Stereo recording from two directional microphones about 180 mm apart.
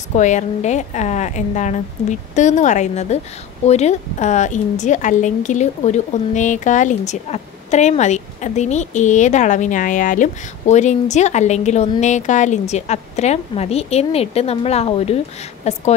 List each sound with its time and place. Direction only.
0.1 s a woman's voice: 40° left (ahead or behind)